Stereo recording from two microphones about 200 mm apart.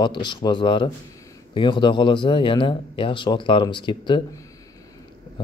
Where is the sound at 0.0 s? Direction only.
20° left (ahead or behind).